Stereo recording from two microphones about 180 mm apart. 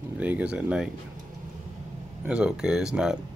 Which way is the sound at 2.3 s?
5° right (ahead or behind).